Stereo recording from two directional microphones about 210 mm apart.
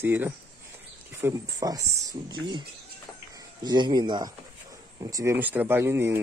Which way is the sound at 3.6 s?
20° right (ahead or behind).